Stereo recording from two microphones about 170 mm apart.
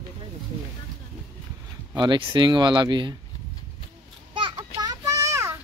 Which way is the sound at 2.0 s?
30° right (ahead or behind).